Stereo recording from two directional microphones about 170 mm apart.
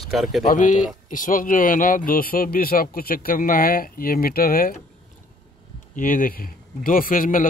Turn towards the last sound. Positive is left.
turn(degrees=55)  # may be behind; listen again after turning